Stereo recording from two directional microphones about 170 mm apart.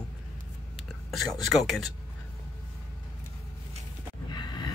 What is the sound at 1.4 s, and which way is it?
Speech, centre (ahead or behind).